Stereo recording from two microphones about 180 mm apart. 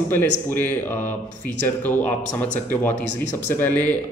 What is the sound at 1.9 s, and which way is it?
Speech, 10° left (ahead or behind).